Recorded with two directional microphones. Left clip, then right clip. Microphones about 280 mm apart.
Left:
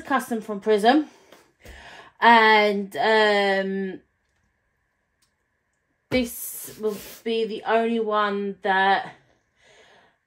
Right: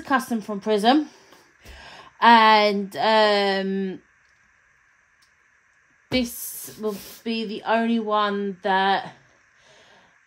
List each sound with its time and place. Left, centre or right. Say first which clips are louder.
0.0 s speech: right 1 dB; right
6.1 s speech: left 1 dB; right
9.7 s a sound: even; right